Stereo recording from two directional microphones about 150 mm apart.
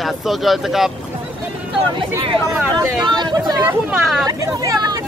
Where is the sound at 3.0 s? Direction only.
30° right (ahead or behind).